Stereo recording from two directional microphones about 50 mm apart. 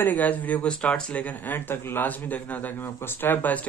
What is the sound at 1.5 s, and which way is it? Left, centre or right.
Speech, left.